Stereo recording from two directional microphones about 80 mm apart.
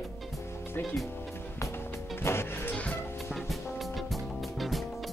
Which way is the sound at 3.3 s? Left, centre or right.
Centre.